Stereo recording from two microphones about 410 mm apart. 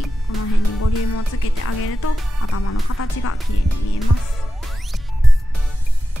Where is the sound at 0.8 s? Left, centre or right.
Left.